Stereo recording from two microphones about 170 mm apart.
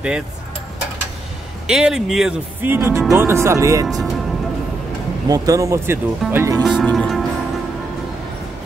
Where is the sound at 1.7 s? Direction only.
5° right (ahead or behind).